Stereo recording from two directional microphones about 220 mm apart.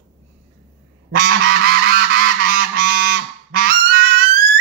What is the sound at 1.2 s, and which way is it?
Goose, 45° right (ahead or behind).